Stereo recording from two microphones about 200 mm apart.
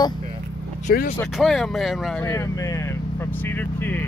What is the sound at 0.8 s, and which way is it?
Speech, 50° left (ahead or behind).